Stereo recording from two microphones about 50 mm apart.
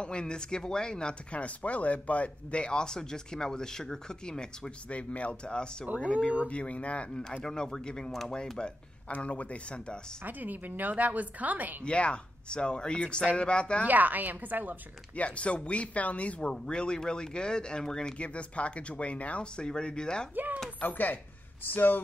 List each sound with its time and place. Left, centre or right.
0.0 s speech: centre
4.8 s speech: left
9.1 s speech: left
10.2 s a woman's voice: right
11.8 s speech: left
13.8 s a woman's voice: right
15.1 s speech: left
18.1 s speech: left
20.3 s a woman's voice: right
20.8 s speech: left